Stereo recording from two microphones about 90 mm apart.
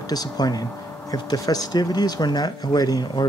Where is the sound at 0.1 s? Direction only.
45° left (ahead or behind).